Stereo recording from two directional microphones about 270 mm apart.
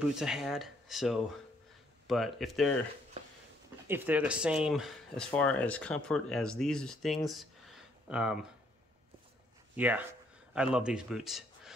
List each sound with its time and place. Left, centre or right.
0.1 s speech: centre
3.8 s speech: centre
9.8 s a man's voice: centre